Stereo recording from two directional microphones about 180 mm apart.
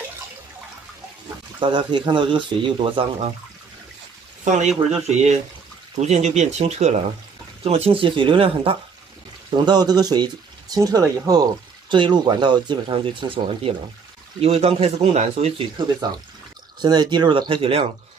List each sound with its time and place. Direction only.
1.6 s speech: 25° right (ahead or behind)
5.1 s speech: 40° right (ahead or behind)